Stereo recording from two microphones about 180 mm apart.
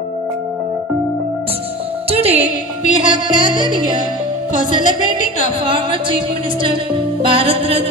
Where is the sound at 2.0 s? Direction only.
35° right (ahead or behind).